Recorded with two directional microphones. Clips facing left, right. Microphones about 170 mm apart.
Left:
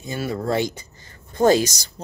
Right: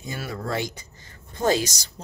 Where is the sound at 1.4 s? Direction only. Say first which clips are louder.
Left 6 dB; 45° left (ahead or behind).